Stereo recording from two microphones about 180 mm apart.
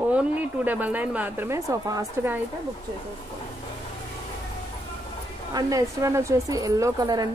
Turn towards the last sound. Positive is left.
turn(degrees=-25)  # may be behind; listen again after turning